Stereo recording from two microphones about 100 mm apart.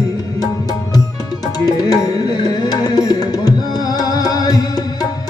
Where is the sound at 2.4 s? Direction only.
40° left (ahead or behind).